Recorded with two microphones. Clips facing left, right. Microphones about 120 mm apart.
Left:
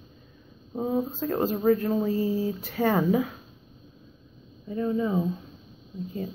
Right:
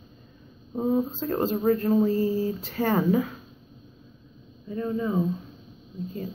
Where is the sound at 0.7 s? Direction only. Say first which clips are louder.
Right 2 dB; centre (ahead or behind).